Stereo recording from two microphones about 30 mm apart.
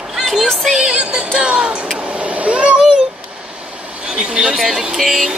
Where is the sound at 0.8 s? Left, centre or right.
Right.